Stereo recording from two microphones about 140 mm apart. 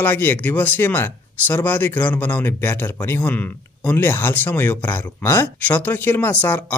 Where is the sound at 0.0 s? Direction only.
15° left (ahead or behind).